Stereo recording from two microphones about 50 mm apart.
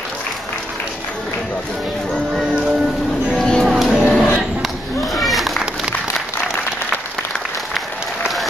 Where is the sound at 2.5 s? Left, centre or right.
Centre.